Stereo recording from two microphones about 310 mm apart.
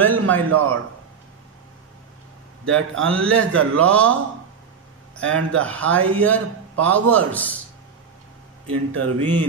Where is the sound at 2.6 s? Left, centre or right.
Right.